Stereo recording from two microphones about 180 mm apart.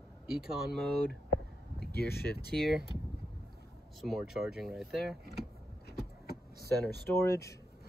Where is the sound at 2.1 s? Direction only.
60° left (ahead or behind).